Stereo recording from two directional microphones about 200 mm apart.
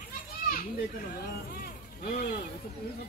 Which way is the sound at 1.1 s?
50° left (ahead or behind).